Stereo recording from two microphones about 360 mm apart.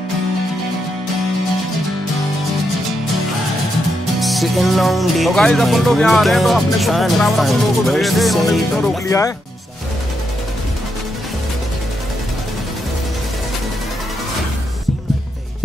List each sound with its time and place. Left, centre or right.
4.2 s music: centre